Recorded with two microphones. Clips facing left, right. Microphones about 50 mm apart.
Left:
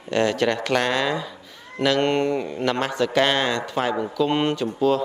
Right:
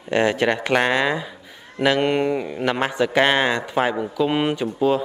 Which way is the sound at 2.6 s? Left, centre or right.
Centre.